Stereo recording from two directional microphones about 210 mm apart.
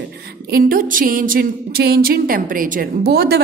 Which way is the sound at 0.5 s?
45° right (ahead or behind).